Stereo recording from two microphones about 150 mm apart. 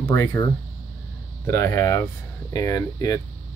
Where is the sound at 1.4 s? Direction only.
20° left (ahead or behind).